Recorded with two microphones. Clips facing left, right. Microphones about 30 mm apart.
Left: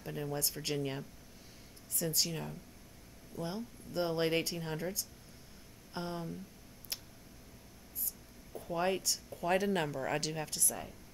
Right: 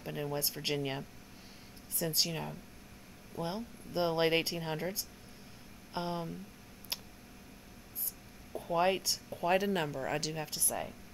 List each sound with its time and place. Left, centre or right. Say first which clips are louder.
0.0 s speech: right 2 dB; centre
6.9 s tick: right 3 dB; right
8.5 s speech: right 4 dB; right
9.6 s speech: even; centre
10.5 s speech: right 3 dB; right